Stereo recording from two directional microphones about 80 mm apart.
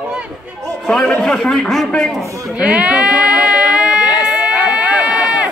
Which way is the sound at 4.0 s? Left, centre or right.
Left.